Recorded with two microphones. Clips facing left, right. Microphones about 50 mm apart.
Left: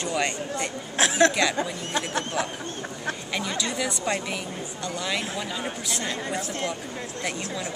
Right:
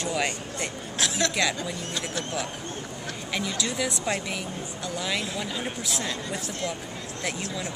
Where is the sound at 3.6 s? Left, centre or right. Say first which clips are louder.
Left 1 dB; centre.